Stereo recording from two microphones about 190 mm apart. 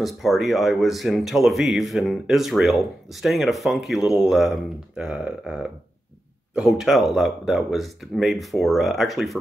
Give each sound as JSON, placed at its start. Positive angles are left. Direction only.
{"t": 0.0, "sound": "speech", "side_deg": 0}